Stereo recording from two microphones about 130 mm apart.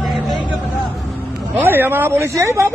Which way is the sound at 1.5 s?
15° right (ahead or behind).